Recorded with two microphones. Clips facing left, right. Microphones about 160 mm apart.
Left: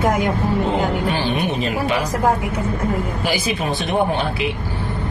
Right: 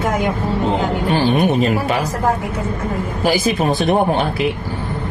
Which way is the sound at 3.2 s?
40° right (ahead or behind).